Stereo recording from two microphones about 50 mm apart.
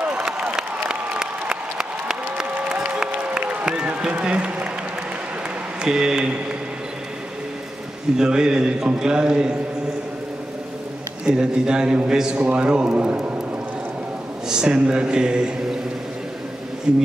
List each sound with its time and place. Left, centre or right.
0.1 s applause: centre
3.1 s applause: right
5.8 s speech: centre
8.2 s a man's voice: centre
11.2 s a man's voice: centre
14.5 s a man's voice: centre